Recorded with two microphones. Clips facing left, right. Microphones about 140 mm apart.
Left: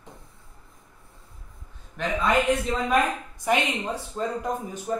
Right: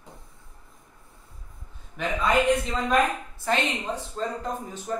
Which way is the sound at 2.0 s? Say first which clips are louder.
Even; centre (ahead or behind).